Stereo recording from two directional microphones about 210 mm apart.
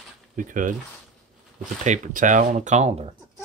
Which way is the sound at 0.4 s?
40° right (ahead or behind).